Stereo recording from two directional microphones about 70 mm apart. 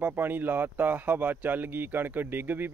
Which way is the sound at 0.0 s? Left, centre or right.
Right.